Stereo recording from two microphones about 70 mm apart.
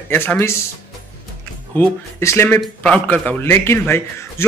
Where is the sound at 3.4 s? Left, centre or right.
Left.